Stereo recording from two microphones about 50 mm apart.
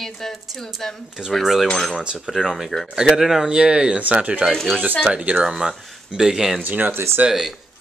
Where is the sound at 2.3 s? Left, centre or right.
Centre.